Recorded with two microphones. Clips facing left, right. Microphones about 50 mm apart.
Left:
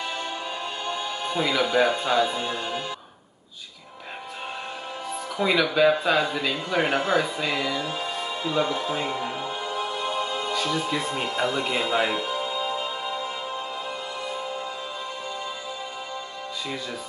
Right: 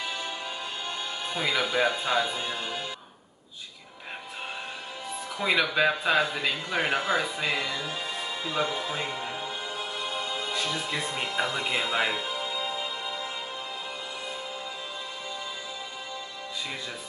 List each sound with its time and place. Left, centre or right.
0.8 s speech: centre
2.2 s music: centre
5.4 s speech: centre
7.9 s music: centre
10.6 s speech: centre